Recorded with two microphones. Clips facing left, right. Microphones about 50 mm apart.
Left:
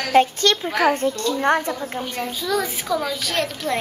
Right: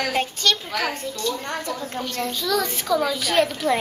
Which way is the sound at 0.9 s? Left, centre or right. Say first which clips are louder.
Left 6 dB; left.